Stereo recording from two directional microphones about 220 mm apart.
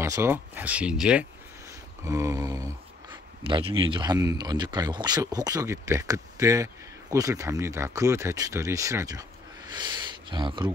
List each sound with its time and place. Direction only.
0.0 s speech: 10° right (ahead or behind)
2.0 s speech: 15° right (ahead or behind)
9.8 s a sound: 20° right (ahead or behind)